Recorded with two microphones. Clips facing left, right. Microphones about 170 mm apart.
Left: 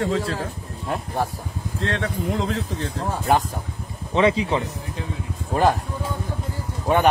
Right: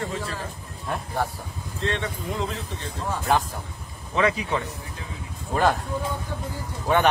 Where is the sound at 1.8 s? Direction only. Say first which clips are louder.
Left 3 dB; 90° left.